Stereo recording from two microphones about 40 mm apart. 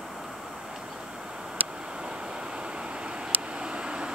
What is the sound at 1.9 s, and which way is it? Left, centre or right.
Vehicle, centre.